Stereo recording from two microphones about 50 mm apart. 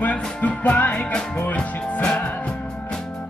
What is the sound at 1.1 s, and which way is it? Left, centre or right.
Music, centre.